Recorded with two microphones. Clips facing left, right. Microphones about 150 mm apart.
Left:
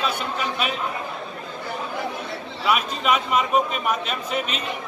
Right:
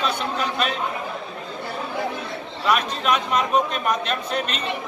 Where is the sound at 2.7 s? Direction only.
5° left (ahead or behind).